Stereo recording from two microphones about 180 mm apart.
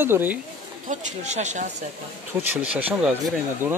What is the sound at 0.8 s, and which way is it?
Speech, 40° right (ahead or behind).